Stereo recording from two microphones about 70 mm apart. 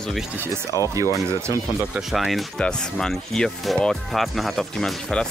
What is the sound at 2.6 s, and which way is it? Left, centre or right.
Speech, centre.